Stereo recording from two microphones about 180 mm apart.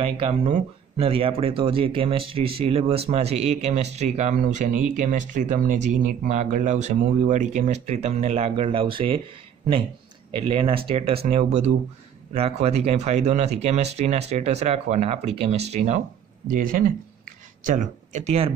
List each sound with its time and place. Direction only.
0.2 s speech: 35° right (ahead or behind)
10.3 s speech: 30° right (ahead or behind)
16.4 s speech: 50° right (ahead or behind)